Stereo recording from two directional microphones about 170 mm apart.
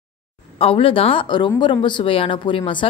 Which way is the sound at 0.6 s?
35° left (ahead or behind).